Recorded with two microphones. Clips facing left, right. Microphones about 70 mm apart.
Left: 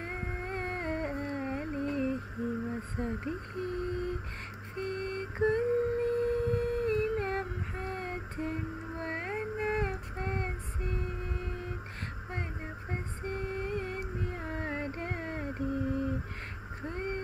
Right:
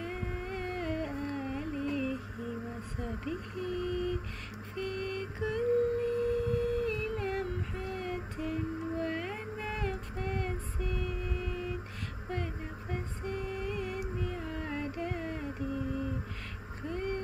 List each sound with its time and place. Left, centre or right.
0.0 s music: left
3.0 s a sound: left
12.9 s lullaby: left
16.8 s vehicle: left